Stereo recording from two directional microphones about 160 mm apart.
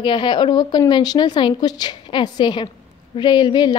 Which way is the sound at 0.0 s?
30° left (ahead or behind).